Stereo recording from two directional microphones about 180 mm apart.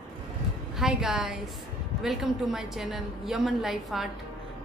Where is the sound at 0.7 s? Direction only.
5° right (ahead or behind).